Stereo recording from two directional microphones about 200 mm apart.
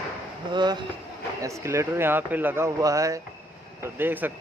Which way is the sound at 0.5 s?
20° right (ahead or behind).